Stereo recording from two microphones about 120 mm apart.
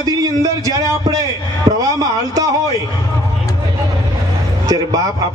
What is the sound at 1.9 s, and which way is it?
Speech, 30° right (ahead or behind).